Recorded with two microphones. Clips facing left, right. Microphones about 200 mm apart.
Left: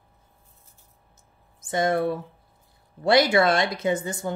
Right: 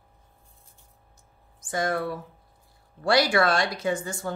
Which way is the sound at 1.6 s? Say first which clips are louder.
Left 4 dB; 20° left (ahead or behind).